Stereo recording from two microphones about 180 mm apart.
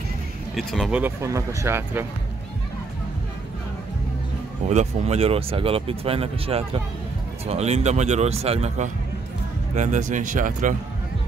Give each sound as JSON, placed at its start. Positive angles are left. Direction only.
{"t": 0.6, "sound": "speech", "side_deg": 0}
{"t": 1.2, "sound": "speech", "side_deg": -15}
{"t": 4.6, "sound": "speech", "side_deg": -40}